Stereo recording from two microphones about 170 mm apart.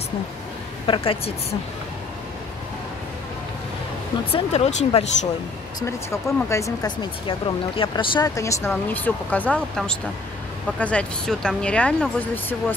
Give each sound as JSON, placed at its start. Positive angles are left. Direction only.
{"t": 0.8, "sound": "speech", "side_deg": 30}
{"t": 4.3, "sound": "speech", "side_deg": 40}
{"t": 5.8, "sound": "speech", "side_deg": 15}